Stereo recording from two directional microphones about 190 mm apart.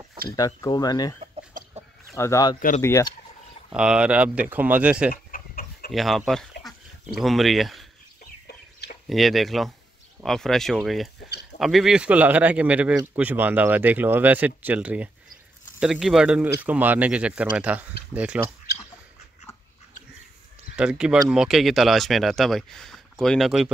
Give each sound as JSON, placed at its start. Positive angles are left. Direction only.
{"t": 0.4, "sound": "speech", "side_deg": 20}
{"t": 1.2, "sound": "chicken", "side_deg": -35}
{"t": 2.1, "sound": "speech", "side_deg": 15}
{"t": 3.7, "sound": "speech", "side_deg": -5}
{"t": 5.1, "sound": "chicken", "side_deg": 50}
{"t": 5.9, "sound": "speech", "side_deg": 0}
{"t": 9.1, "sound": "speech", "side_deg": 0}
{"t": 20.7, "sound": "speech", "side_deg": -5}